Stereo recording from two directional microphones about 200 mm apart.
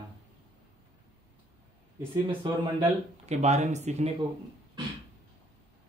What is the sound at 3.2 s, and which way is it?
Speech, 35° right (ahead or behind).